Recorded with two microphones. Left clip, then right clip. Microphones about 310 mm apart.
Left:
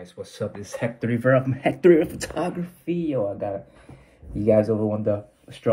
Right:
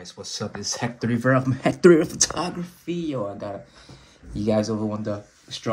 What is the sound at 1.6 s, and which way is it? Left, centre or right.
Speech, right.